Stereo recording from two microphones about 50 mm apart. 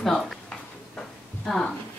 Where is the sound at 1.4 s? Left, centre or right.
Centre.